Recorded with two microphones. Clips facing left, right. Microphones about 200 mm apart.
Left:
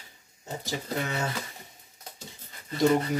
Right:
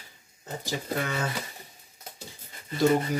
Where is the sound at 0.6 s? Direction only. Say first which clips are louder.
Right 1 dB; 20° left (ahead or behind).